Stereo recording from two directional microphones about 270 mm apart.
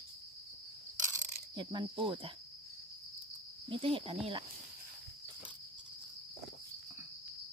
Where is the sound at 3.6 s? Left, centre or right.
Centre.